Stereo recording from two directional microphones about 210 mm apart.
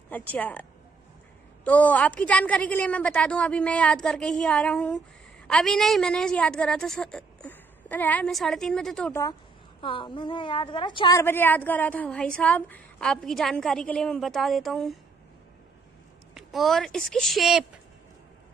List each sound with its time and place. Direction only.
0.1 s a woman's voice: 5° left (ahead or behind)
9.8 s a woman's voice: 25° left (ahead or behind); by 15.0 s centre (ahead or behind)
16.3 s a woman's voice: centre (ahead or behind)